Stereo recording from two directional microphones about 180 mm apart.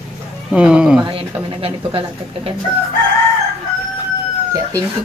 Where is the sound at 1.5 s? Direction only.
30° right (ahead or behind).